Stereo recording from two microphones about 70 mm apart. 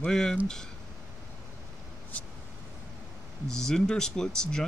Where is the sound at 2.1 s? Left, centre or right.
Centre.